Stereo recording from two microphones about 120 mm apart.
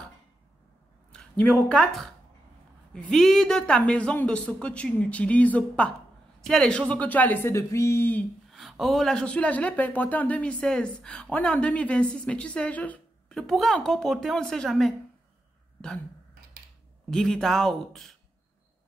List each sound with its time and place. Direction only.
1.4 s a man's voice: 10° left (ahead or behind)
7.5 s speech: 25° left (ahead or behind)
8.5 s speech: centre (ahead or behind)
17.1 s a man's voice: 5° left (ahead or behind)